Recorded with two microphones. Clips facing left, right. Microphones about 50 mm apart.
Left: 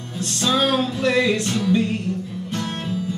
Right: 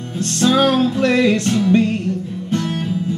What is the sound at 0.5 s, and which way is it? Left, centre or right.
Music, right.